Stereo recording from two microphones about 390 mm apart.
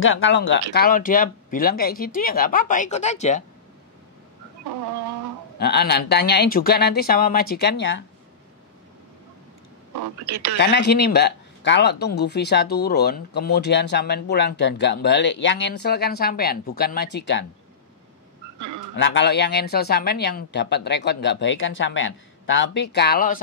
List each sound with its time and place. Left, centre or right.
0.0 s speech: left
5.6 s speech: left
10.3 s speech: right
10.6 s speech: left
18.9 s speech: left